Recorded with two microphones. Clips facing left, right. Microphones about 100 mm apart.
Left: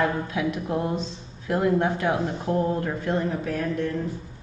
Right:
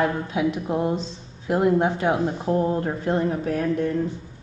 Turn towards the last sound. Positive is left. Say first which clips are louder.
# right 3 dB
turn(degrees=-25)  # may be behind; listen again after turning